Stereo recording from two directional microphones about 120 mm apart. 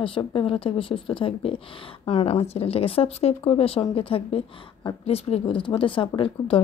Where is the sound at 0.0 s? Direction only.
45° left (ahead or behind).